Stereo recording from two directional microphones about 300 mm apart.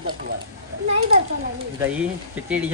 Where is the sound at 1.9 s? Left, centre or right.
Centre.